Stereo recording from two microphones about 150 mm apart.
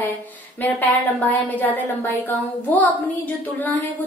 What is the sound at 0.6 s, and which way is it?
A woman's voice, 10° left (ahead or behind).